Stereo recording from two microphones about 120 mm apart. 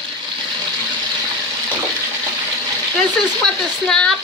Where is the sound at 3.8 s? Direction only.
5° left (ahead or behind).